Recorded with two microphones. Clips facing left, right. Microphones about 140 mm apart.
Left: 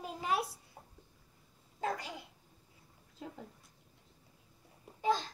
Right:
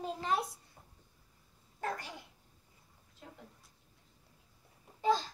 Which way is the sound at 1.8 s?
15° left (ahead or behind).